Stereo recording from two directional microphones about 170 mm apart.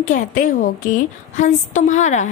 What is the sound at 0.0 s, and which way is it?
A woman's voice, 50° left (ahead or behind).